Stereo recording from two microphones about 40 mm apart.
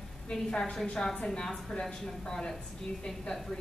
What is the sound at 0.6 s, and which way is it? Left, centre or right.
A woman's voice, centre.